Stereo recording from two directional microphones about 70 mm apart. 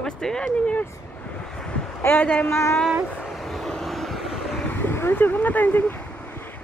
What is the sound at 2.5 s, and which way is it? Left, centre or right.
Speech, left.